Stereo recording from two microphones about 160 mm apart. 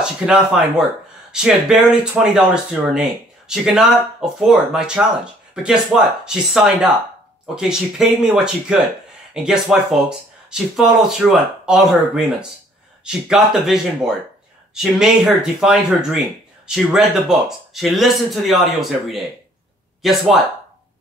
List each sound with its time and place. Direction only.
0.0 s speech: 5° right (ahead or behind)